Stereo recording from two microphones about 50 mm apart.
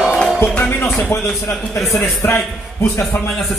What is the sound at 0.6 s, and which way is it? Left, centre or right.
Speech, left.